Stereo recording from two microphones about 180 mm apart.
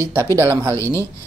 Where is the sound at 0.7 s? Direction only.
15° left (ahead or behind).